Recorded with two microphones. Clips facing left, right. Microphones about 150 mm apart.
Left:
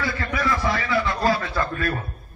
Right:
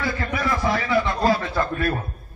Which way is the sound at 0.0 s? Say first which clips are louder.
Even; 20° right (ahead or behind).